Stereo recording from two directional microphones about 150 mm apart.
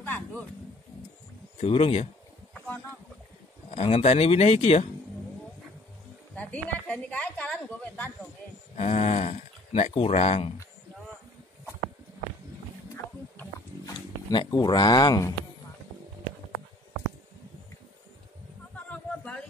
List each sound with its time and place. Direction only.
0.0 s a sound: 10° left (ahead or behind)
1.6 s speech: 45° left (ahead or behind)
3.7 s speech: 45° left (ahead or behind)
6.3 s a woman's voice: 10° left (ahead or behind)
8.7 s speech: 45° left (ahead or behind)
13.8 s speech: 30° left (ahead or behind)
18.9 s a sound: 10° left (ahead or behind)